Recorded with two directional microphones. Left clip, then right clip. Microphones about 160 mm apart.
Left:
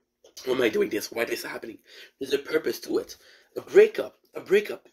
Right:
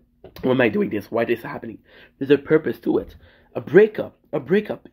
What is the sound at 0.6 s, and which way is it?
Speech, 15° left (ahead or behind).